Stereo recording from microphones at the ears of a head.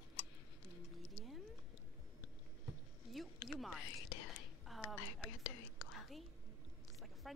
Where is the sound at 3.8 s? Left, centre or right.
Left.